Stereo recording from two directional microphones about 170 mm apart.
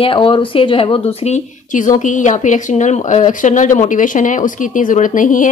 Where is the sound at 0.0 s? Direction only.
30° left (ahead or behind).